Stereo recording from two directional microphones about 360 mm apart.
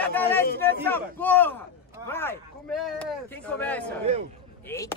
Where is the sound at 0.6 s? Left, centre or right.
Centre.